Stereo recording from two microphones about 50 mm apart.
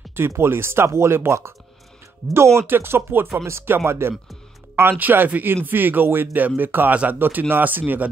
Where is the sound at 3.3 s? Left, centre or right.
Right.